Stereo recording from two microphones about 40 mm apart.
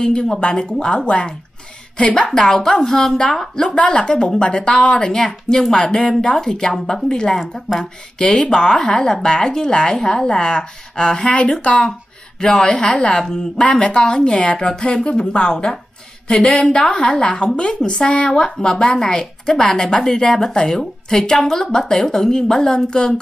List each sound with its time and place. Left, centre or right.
0.0 s speech: centre
2.3 s a woman's voice: centre
3.7 s speech: left
5.1 s a woman's voice: centre
15.0 s a woman's voice: left